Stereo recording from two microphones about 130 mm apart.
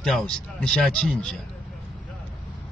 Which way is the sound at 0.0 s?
5° left (ahead or behind).